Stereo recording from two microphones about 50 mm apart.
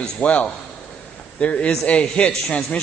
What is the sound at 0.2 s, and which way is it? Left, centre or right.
Speech, left.